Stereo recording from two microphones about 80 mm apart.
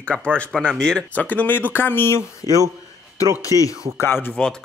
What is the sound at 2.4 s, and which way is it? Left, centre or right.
Speech, right.